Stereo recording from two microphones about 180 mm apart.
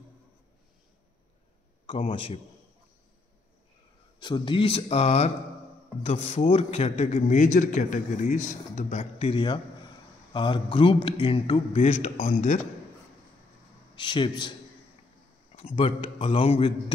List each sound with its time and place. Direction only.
1.9 s a man's voice: 30° left (ahead or behind)
4.2 s a man's voice: 25° left (ahead or behind)
13.9 s a man's voice: 25° left (ahead or behind)
15.5 s a man's voice: 30° left (ahead or behind)